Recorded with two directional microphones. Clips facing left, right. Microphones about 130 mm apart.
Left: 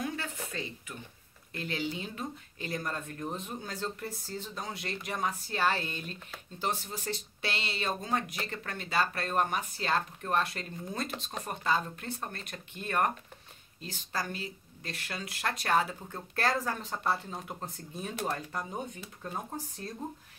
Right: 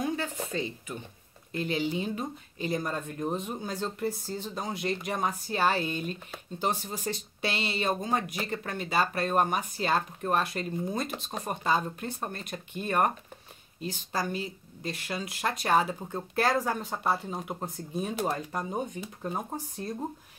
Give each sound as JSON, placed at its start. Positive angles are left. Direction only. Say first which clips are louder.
{"t": 0.0, "sound": "speech", "louder": "right 5 dB", "side_deg": -20}